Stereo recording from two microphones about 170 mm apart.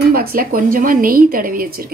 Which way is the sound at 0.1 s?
60° right (ahead or behind).